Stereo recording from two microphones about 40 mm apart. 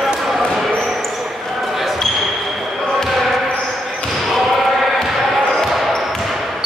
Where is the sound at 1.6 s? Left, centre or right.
Centre.